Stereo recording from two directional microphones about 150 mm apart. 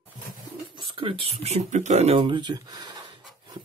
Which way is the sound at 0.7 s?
35° right (ahead or behind).